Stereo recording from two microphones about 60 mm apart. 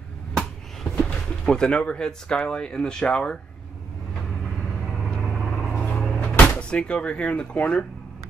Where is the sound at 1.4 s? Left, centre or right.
Centre.